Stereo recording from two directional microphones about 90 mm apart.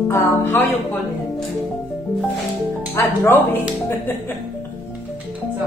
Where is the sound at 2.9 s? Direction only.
25° left (ahead or behind).